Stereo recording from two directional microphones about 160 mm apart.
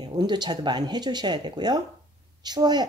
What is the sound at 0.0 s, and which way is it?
Speech, 25° right (ahead or behind).